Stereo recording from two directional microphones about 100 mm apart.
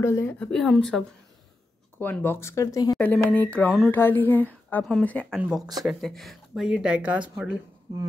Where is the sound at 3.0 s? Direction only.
15° left (ahead or behind).